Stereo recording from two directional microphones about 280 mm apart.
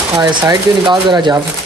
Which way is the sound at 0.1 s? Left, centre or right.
Centre.